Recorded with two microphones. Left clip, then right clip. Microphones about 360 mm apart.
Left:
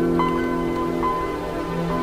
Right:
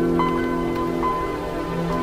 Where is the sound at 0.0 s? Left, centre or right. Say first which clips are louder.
Even; centre.